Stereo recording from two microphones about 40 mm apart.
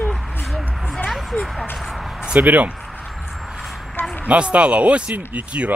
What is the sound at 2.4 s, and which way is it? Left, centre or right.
Speech, right.